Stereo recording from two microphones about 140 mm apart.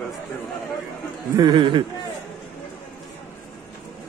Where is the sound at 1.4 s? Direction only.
35° right (ahead or behind).